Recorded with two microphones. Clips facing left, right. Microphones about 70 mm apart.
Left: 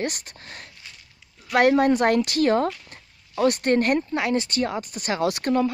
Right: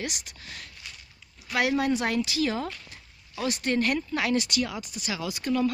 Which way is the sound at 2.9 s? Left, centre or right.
Left.